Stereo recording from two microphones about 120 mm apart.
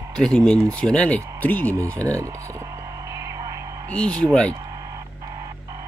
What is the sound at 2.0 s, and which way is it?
Speech, 25° right (ahead or behind).